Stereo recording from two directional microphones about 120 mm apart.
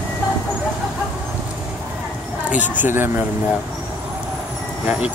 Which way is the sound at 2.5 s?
15° right (ahead or behind).